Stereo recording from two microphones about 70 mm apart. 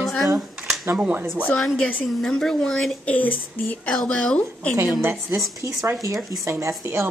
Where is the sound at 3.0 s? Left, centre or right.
Left.